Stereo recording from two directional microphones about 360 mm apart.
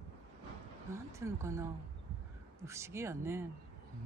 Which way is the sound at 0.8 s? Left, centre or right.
Centre.